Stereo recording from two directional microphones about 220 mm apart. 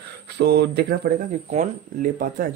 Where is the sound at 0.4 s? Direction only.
50° right (ahead or behind).